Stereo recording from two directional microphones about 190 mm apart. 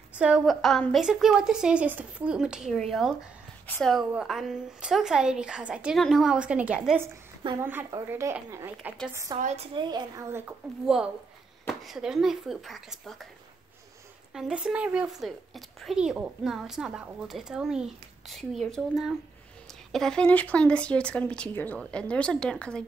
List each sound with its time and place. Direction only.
0.1 s a woman's voice: 5° right (ahead or behind)
9.4 s a woman's voice: 40° right (ahead or behind)
9.8 s a woman's voice: 20° right (ahead or behind)
11.8 s a woman's voice: centre (ahead or behind)
14.3 s a woman's voice: 5° right (ahead or behind)